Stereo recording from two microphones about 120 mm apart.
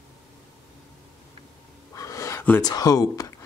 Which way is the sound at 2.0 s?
25° left (ahead or behind).